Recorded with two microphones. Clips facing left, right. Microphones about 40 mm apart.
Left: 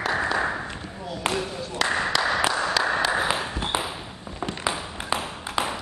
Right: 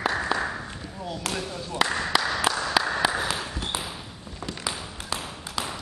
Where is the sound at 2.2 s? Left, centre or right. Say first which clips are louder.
Left 4 dB; centre.